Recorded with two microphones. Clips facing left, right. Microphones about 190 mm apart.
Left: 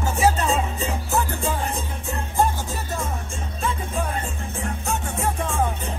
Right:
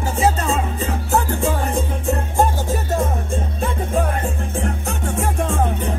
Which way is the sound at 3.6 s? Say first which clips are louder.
Right 4 dB; 55° right (ahead or behind).